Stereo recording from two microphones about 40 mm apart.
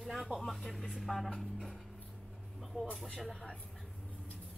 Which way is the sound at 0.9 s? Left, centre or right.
Centre.